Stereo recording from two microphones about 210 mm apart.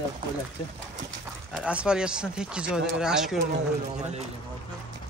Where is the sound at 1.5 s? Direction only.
5° right (ahead or behind).